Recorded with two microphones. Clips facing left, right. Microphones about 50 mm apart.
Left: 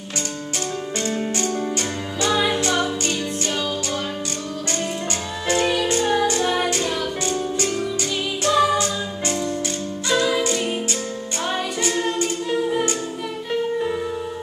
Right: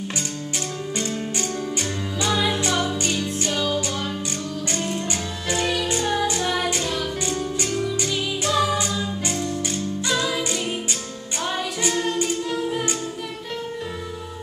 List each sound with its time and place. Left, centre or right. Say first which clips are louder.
2.2 s music: left 3 dB; centre
5.6 s music: left 3 dB; centre
10.1 s music: left 6 dB; centre
11.9 s music: even; centre